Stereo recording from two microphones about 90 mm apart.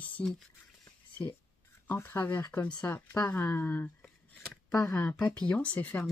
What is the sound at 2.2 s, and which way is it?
Speech, 55° left (ahead or behind).